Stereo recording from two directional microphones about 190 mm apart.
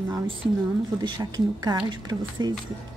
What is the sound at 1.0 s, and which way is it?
Speech, 20° right (ahead or behind).